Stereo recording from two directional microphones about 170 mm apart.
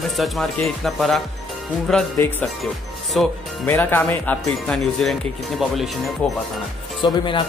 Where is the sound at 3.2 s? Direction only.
Centre (ahead or behind).